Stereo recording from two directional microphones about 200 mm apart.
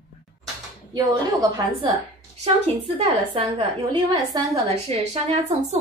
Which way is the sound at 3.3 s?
30° right (ahead or behind).